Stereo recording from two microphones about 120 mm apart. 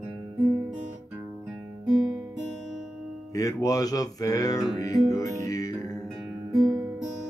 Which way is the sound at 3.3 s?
25° left (ahead or behind).